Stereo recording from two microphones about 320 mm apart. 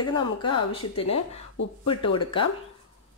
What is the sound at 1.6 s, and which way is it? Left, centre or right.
Speech, left.